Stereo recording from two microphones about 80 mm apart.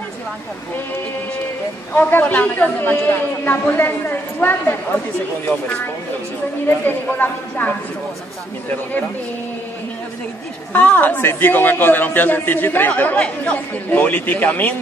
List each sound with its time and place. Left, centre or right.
2.0 s a man's voice: left
6.7 s a man's voice: left
10.7 s a man's voice: left